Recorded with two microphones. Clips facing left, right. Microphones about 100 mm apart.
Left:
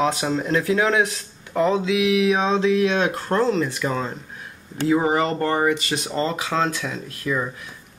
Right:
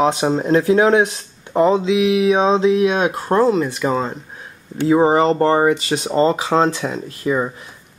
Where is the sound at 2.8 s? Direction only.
15° right (ahead or behind).